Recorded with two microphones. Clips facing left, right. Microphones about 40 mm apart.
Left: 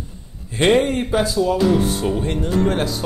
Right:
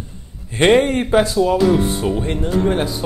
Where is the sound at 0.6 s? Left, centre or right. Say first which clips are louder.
Right 3 dB; right.